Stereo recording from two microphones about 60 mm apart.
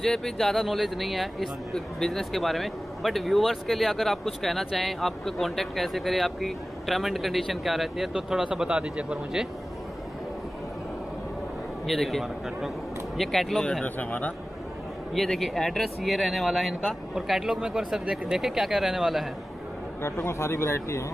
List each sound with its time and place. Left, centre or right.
0.0 s speech: centre
11.8 s speech: centre
13.8 s a man's voice: left
15.1 s speech: centre
20.0 s speech: left